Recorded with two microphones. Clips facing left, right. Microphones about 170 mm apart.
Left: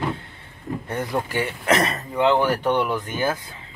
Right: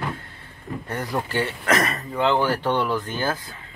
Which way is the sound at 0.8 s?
20° left (ahead or behind).